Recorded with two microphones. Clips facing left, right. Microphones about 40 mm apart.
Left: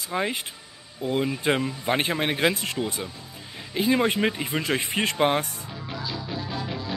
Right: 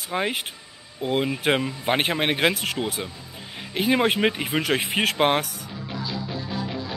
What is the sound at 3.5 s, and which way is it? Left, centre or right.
Speech, right.